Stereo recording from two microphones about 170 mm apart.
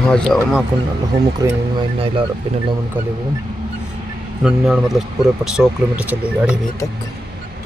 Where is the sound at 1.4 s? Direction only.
20° right (ahead or behind).